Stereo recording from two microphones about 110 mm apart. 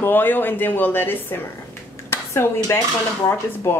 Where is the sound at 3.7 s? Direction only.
20° left (ahead or behind).